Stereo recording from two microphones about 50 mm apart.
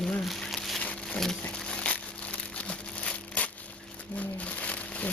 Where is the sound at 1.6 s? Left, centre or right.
Centre.